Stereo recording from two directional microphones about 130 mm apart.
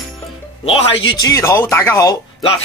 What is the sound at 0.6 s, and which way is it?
Speech, 45° left (ahead or behind).